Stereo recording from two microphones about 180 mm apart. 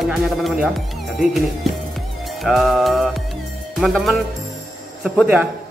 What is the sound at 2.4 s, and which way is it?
Speech, centre (ahead or behind).